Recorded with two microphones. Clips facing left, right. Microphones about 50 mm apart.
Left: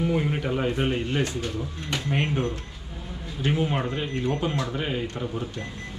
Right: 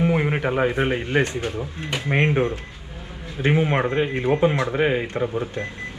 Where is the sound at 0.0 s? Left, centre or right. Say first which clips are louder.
Right 4 dB; right.